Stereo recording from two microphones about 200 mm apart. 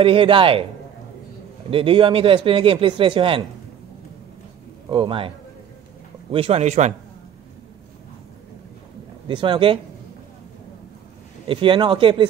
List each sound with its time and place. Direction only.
0.0 s a man's voice: 25° right (ahead or behind)
1.7 s a man's voice: 25° right (ahead or behind)
4.8 s a man's voice: 25° right (ahead or behind)
6.3 s speech: 30° right (ahead or behind)
9.3 s a man's voice: 25° right (ahead or behind)
11.4 s a man's voice: 25° right (ahead or behind)